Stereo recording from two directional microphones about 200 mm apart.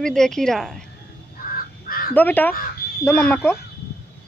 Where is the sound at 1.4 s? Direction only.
45° left (ahead or behind).